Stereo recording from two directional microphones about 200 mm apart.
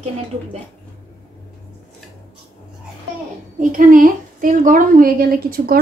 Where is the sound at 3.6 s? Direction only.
40° right (ahead or behind).